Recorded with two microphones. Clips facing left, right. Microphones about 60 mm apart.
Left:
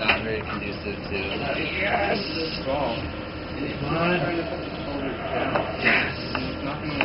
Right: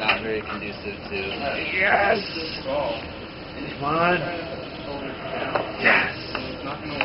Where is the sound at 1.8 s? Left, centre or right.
Right.